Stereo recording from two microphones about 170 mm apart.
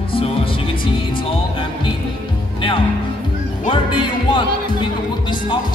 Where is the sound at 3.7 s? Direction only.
30° left (ahead or behind).